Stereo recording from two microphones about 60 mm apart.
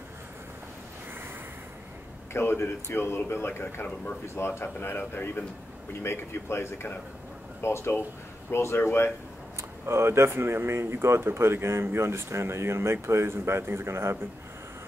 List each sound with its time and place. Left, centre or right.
2.3 s speech: left
3.8 s speech: left
4.4 s speech: left
9.6 s speech: right